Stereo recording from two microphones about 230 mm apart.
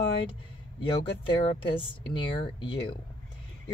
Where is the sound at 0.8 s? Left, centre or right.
Left.